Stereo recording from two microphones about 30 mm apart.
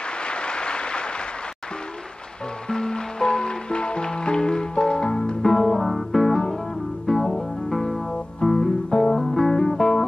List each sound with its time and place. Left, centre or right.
0.2 s a sound: left
2.7 s music: left
5.4 s music: centre
5.8 s music: centre
6.3 s music: centre